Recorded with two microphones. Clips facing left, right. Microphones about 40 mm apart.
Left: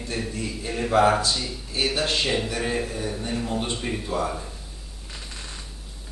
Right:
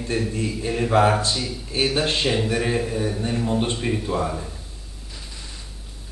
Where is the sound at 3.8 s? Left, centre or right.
Centre.